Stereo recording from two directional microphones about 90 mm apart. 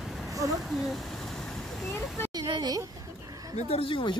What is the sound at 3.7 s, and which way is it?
Speech, 75° left (ahead or behind).